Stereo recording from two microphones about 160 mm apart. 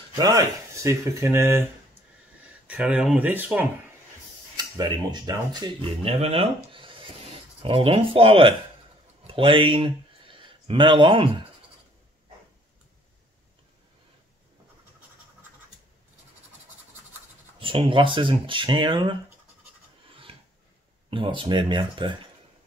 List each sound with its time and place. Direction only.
0.1 s speech: 25° right (ahead or behind)
4.6 s speech: 25° right (ahead or behind)
6.0 s speech: 40° right (ahead or behind)
17.6 s speech: 30° right (ahead or behind)
20.1 s filing: 35° right (ahead or behind)
21.1 s speech: 30° right (ahead or behind)